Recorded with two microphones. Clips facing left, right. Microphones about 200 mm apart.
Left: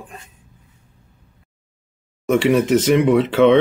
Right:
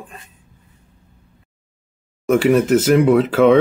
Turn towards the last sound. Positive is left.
turn(degrees=-5)  # may be behind; listen again after turning